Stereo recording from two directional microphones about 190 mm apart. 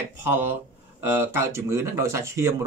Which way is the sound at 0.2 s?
10° right (ahead or behind).